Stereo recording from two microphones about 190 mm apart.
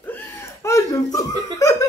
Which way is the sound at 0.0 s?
15° left (ahead or behind).